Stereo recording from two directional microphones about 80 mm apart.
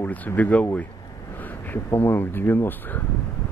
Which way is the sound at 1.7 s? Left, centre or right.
Left.